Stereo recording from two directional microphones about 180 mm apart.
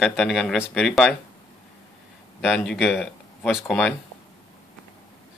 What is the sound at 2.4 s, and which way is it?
Speech, centre (ahead or behind).